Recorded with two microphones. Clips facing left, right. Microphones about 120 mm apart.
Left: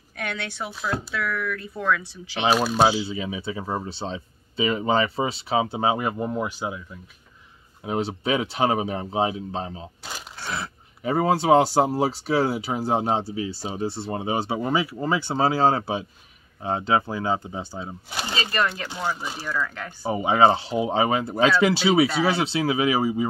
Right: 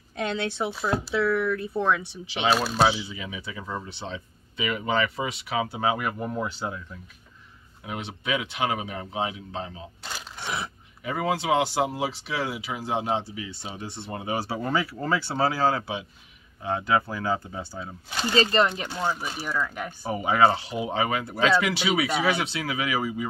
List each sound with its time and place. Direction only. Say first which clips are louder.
0.2 s speech: right 4 dB; 25° right (ahead or behind)
2.5 s speech: left 4 dB; centre (ahead or behind)
2.8 s speech: left 3 dB; 25° left (ahead or behind)
7.8 s speech: left 8 dB; 35° left (ahead or behind)
10.4 s speech: left 1 dB; 15° right (ahead or behind)
11.1 s speech: left 6 dB; 35° left (ahead or behind)
18.4 s speech: right 3 dB; 25° right (ahead or behind)
20.0 s speech: left 3 dB; 20° left (ahead or behind)